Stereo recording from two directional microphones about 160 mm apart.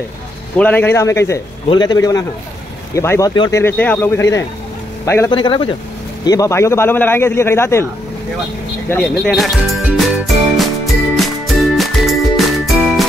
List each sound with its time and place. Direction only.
0.6 s a man's voice: 10° left (ahead or behind)
5.3 s speech: 30° left (ahead or behind)
6.2 s a man's voice: 20° left (ahead or behind)
8.8 s speech: 10° left (ahead or behind)
9.8 s jingle: centre (ahead or behind)
11.1 s music: centre (ahead or behind)